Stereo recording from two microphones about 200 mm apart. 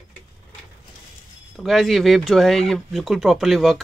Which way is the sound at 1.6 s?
Centre (ahead or behind).